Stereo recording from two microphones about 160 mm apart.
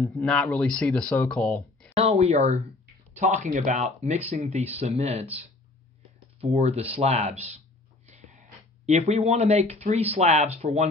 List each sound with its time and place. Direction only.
0.1 s speech: 5° left (ahead or behind)
2.0 s speech: 40° right (ahead or behind)
6.4 s speech: 40° right (ahead or behind)
8.1 s snort: 45° right (ahead or behind)
8.8 s speech: 45° right (ahead or behind)